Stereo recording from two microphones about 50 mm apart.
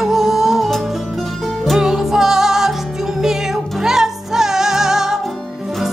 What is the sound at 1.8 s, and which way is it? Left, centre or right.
Music, centre.